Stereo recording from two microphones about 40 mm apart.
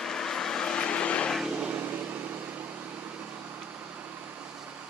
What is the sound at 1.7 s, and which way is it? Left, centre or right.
Microwave oven, right.